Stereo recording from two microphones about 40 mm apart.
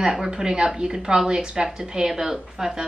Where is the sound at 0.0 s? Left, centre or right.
Centre.